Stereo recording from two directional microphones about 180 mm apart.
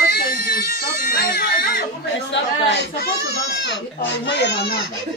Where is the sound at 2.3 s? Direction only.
70° left (ahead or behind).